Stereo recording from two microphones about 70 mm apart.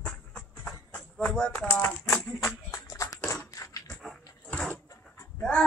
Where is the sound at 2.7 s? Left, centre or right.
Left.